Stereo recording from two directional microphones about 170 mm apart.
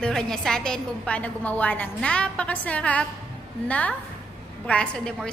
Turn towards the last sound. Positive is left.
turn(degrees=5)  # may be behind; listen again after turning